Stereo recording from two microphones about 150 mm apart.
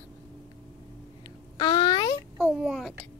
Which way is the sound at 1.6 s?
30° left (ahead or behind).